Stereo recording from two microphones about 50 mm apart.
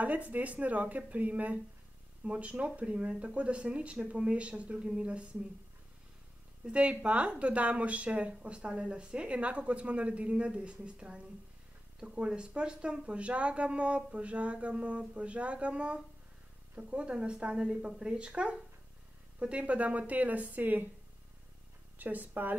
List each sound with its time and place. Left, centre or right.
0.0 s a woman's voice: right
6.6 s a woman's voice: right
21.9 s speech: right